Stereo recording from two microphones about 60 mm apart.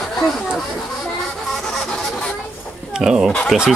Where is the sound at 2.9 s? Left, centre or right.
Centre.